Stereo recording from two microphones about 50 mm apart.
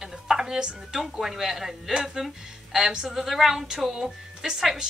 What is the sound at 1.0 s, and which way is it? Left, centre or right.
A woman's voice, centre.